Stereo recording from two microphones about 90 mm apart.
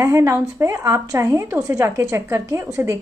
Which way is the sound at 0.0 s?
35° right (ahead or behind).